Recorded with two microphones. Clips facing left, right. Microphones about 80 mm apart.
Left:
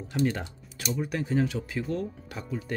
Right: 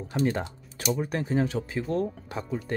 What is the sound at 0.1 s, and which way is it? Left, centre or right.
Speech, right.